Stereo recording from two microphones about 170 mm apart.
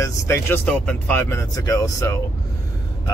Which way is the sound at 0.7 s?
5° left (ahead or behind).